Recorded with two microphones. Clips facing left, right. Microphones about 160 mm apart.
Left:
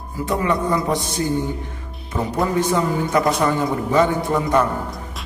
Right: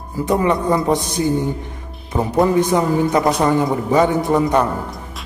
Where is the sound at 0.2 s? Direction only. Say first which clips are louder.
Right 4 dB; 20° right (ahead or behind).